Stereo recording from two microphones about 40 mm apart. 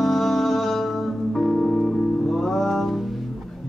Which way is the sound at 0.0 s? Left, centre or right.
Centre.